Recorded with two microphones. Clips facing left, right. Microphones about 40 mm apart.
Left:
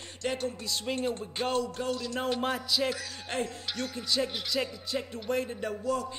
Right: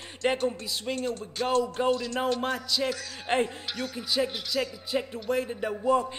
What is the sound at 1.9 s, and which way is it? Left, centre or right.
Speech, centre.